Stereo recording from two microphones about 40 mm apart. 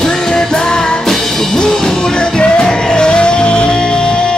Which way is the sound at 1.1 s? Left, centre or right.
Centre.